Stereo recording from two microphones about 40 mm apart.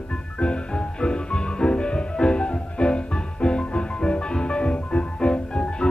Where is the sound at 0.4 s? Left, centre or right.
Left.